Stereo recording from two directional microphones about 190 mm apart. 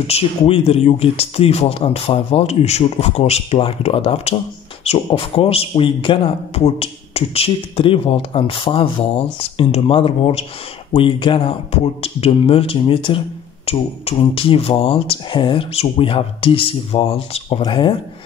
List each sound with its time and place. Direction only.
0.0 s a man's voice: 30° left (ahead or behind)